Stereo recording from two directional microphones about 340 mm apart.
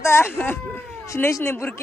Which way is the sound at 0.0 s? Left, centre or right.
Centre.